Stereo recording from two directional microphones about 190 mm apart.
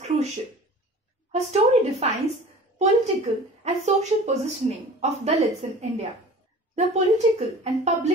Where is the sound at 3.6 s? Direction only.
35° right (ahead or behind).